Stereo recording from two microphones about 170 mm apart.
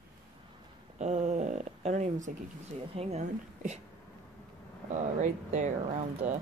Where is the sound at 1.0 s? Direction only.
40° right (ahead or behind).